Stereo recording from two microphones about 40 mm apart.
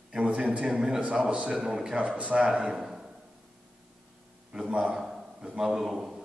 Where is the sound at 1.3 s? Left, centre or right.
Right.